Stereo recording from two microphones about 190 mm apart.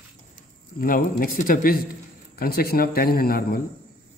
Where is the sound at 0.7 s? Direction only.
50° left (ahead or behind).